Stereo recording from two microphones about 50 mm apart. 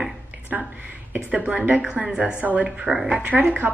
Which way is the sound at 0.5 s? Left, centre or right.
Right.